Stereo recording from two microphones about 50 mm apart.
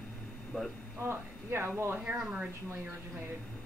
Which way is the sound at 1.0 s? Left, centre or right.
Right.